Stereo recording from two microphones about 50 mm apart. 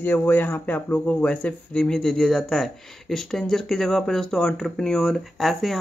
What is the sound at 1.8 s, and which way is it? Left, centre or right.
Speech, centre.